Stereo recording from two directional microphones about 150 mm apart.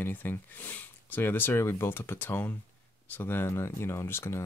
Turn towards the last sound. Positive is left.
turn(degrees=15)  # may be behind; listen again after turning